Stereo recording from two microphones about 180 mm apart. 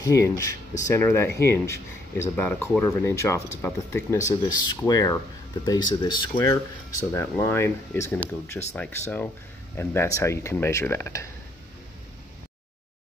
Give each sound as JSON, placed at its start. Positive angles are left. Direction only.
{"t": 0.0, "sound": "speech", "side_deg": 20}